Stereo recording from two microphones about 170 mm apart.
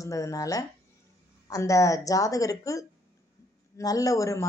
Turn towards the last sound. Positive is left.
turn(degrees=20)  # may be behind; listen again after turning